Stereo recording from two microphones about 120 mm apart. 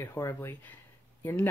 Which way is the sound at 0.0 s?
20° left (ahead or behind).